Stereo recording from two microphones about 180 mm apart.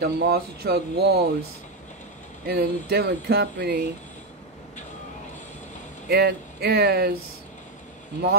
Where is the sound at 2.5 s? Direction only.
60° right (ahead or behind).